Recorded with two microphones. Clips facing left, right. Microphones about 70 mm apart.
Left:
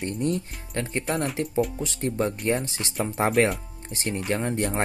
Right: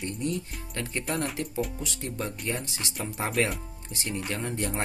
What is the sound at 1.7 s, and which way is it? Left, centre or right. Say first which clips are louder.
Speech: left 7 dB; left.